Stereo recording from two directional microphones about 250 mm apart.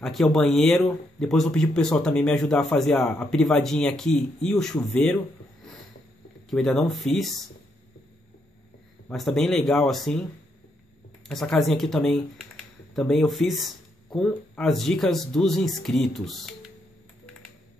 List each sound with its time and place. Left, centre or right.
0.0 s speech: centre
6.5 s speech: centre
9.1 s speech: centre
11.2 s speech: centre